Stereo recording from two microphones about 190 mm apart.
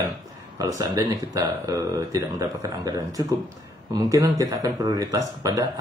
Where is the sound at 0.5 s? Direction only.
20° right (ahead or behind).